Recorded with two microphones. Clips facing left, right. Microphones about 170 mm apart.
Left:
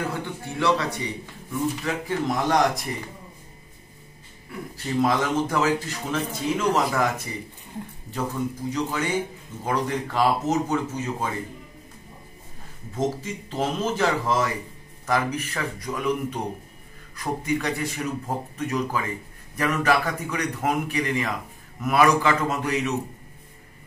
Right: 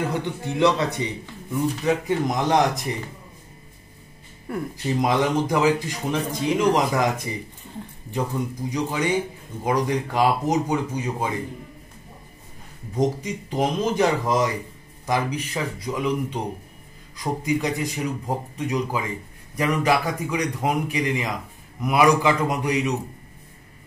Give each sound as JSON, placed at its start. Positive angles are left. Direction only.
{"t": 0.1, "sound": "speech", "side_deg": -20}
{"t": 4.5, "sound": "speech", "side_deg": -50}
{"t": 5.0, "sound": "a man's voice", "side_deg": -15}
{"t": 12.9, "sound": "a man's voice", "side_deg": -15}